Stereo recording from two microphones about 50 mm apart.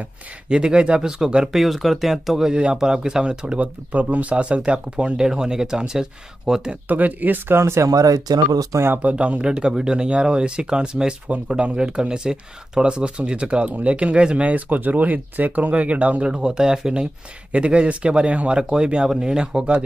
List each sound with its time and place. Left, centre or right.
0.5 s speech: centre
2.5 s speech: centre
3.5 s speech: right; by 6.8 s centre
6.9 s speech: right
7.6 s speech: right
9.0 s speech: right
9.5 s speech: centre; by 16.3 s right
16.3 s speech: centre